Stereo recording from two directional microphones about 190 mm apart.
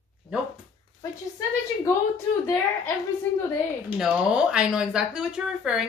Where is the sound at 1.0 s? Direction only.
15° left (ahead or behind).